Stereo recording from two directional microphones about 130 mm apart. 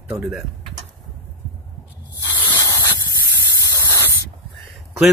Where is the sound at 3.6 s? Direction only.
25° left (ahead or behind).